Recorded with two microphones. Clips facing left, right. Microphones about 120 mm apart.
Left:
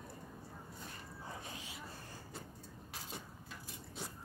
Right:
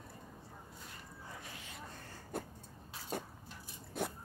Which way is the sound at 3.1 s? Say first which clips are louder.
Right 7 dB; 45° right (ahead or behind).